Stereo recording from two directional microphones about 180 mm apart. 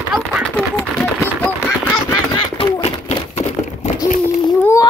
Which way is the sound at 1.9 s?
25° left (ahead or behind).